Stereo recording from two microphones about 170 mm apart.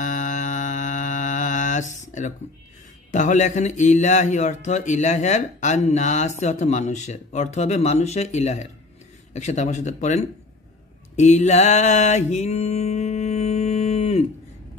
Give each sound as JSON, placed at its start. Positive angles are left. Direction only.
{"t": 0.0, "sound": "mantra", "side_deg": 50}
{"t": 3.1, "sound": "a man's voice", "side_deg": 45}
{"t": 11.1, "sound": "mantra", "side_deg": 45}